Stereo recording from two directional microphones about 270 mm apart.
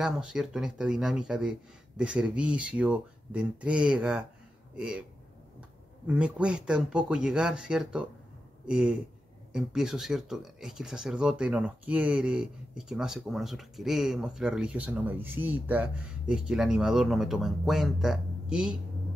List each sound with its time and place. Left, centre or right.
0.0 s speech: centre
6.0 s speech: centre